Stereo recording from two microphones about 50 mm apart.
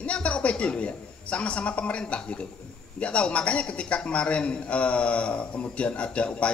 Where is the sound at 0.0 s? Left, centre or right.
Left.